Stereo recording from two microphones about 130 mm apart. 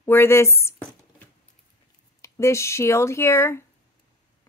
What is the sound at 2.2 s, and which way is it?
A woman's voice, 20° left (ahead or behind).